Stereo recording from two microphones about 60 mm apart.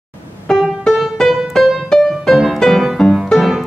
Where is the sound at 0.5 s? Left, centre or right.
Centre.